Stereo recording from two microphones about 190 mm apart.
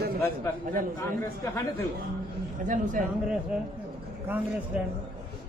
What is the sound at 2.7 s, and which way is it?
Speech, 45° right (ahead or behind).